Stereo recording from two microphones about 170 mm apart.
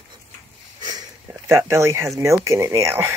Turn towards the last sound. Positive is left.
turn(degrees=-15)  # may be behind; listen again after turning